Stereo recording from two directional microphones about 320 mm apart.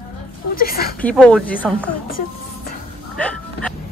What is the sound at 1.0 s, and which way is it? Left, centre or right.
Speech, centre.